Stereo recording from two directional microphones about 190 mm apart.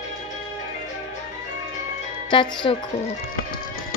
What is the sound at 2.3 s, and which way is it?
Speech, 25° left (ahead or behind).